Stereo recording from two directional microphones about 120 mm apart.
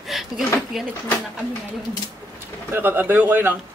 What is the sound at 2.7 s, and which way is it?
Speech, 15° right (ahead or behind).